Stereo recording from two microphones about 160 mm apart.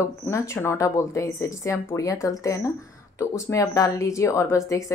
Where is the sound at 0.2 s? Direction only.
15° left (ahead or behind).